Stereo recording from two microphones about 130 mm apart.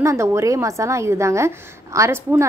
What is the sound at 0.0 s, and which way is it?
A woman's voice, 20° right (ahead or behind).